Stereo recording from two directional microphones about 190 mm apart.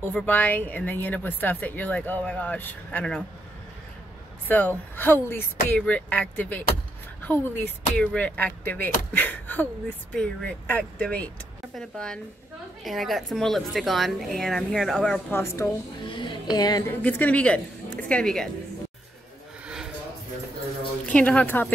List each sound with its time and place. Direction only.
0.0 s speech: 5° left (ahead or behind)
4.5 s a woman's voice: 10° left (ahead or behind)
16.1 s a sound: 25° left (ahead or behind)
17.0 s a woman's voice: 5° left (ahead or behind)
21.0 s speech: 5° left (ahead or behind)